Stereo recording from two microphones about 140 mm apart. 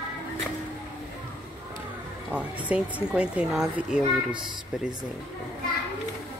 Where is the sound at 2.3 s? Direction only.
10° right (ahead or behind).